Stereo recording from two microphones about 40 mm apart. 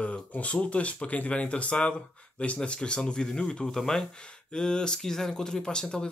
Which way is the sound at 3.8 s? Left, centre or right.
Centre.